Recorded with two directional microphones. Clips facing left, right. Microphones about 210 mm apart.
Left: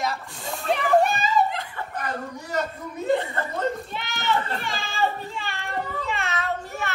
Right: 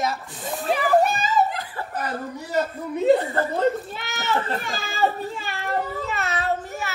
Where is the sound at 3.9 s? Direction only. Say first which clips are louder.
Even; 45° right (ahead or behind).